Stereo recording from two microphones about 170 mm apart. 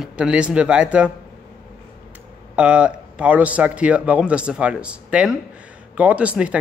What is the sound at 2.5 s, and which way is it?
Speech, 5° right (ahead or behind).